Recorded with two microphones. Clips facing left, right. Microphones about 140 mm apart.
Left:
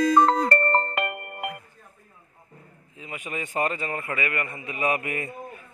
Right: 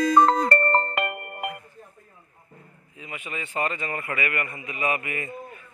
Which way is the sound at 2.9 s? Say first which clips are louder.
Left 2 dB; 35° left (ahead or behind).